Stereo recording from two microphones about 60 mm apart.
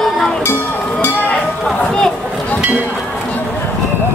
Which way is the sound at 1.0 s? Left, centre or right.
Left.